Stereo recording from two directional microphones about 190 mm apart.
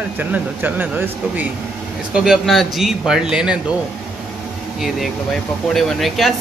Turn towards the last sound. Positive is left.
turn(degrees=0)  # may be behind; listen again after turning